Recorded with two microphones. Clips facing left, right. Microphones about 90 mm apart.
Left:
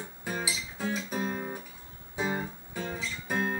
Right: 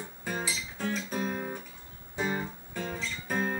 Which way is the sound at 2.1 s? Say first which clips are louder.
Even; 5° left (ahead or behind).